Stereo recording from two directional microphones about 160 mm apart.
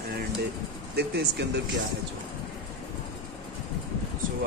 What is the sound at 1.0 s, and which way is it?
Speech, 90° right.